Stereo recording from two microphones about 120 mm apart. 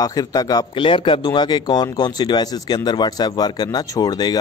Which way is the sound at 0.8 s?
45° left (ahead or behind).